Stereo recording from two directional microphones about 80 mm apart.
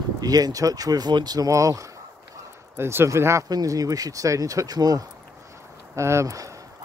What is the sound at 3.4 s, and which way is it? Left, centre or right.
Speech, right.